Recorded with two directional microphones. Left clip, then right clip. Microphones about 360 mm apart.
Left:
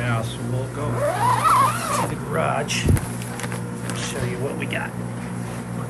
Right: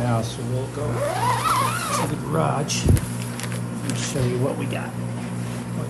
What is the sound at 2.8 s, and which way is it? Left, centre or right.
Music, centre.